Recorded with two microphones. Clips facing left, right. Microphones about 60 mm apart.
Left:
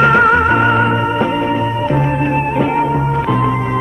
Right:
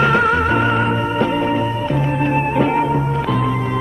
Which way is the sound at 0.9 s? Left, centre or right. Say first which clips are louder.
Left 3 dB; left.